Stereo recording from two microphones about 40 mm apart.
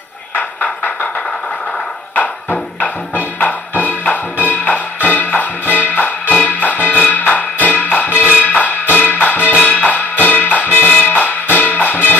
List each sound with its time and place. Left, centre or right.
0.4 s music: left
2.1 s music: left